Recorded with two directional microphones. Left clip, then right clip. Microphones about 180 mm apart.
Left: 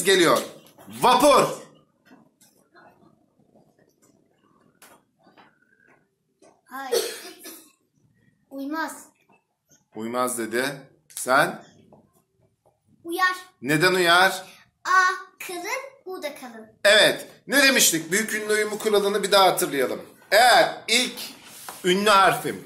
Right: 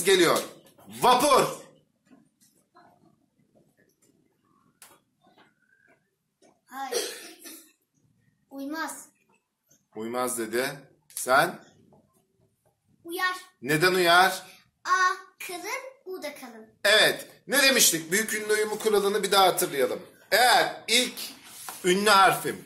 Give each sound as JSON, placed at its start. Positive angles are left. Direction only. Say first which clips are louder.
{"t": 0.0, "sound": "speech", "louder": "left 3 dB", "side_deg": 0}
{"t": 8.5, "sound": "a child's voice", "louder": "left 4 dB", "side_deg": -15}
{"t": 9.9, "sound": "speech", "louder": "left 4 dB", "side_deg": 0}
{"t": 13.0, "sound": "a child's voice", "louder": "left 6 dB", "side_deg": 10}
{"t": 13.6, "sound": "speech", "louder": "left 2 dB", "side_deg": 0}
{"t": 14.8, "sound": "a child's voice", "louder": "left 4 dB", "side_deg": 10}
{"t": 16.8, "sound": "speech", "louder": "left 4 dB", "side_deg": 0}